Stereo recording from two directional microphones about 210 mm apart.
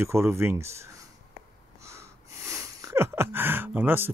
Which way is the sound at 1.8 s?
15° right (ahead or behind).